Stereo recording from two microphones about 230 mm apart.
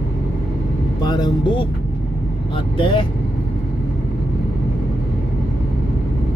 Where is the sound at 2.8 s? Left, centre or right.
Left.